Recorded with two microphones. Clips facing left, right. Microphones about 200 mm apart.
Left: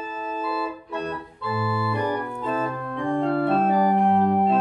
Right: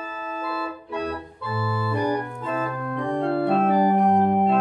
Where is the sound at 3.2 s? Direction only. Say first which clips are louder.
Even; 5° right (ahead or behind).